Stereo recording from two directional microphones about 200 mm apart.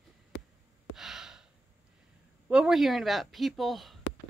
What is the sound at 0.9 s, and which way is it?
Sigh, centre (ahead or behind).